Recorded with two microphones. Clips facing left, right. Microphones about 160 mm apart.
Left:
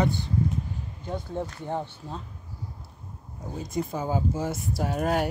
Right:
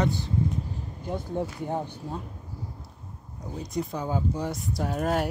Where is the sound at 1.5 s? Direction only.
15° right (ahead or behind).